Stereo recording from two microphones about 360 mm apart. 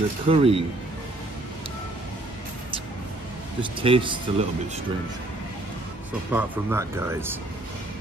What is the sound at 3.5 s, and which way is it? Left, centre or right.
Speech, centre.